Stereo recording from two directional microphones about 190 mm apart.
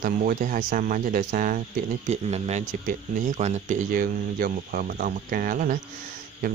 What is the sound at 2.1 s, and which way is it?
Speech, 35° right (ahead or behind).